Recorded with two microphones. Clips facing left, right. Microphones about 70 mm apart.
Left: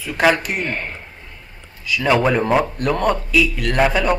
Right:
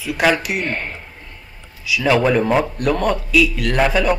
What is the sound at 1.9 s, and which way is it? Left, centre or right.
A man's voice, centre.